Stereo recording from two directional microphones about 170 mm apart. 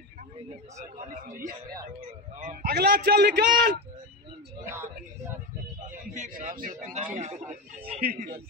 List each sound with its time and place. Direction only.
2.6 s a man's voice: 65° right (ahead or behind)
4.6 s speech: 15° right (ahead or behind)
6.1 s a man's voice: 50° right (ahead or behind)